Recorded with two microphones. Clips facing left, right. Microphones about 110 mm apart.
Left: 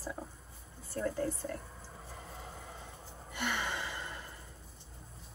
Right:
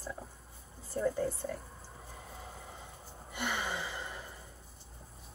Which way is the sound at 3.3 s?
15° right (ahead or behind).